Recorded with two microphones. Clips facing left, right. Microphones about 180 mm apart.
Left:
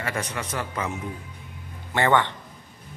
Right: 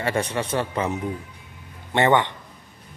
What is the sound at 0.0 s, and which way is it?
Speech, 30° right (ahead or behind).